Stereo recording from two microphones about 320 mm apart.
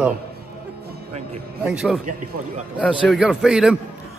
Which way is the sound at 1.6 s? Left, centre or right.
Centre.